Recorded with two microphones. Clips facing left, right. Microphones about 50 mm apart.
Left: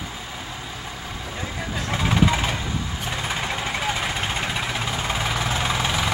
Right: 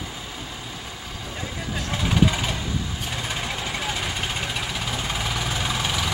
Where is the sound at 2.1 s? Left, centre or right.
Left.